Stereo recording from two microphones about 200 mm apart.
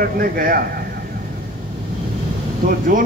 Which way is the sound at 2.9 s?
40° right (ahead or behind).